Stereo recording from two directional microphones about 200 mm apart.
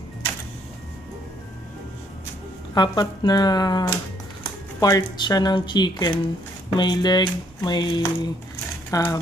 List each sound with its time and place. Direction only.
2.7 s speech: 20° left (ahead or behind)